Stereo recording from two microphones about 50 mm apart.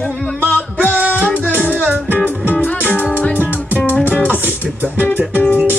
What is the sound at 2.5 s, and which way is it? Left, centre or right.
Music, left.